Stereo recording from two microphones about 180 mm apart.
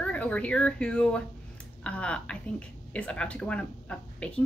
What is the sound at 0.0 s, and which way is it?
A woman's voice, 10° left (ahead or behind).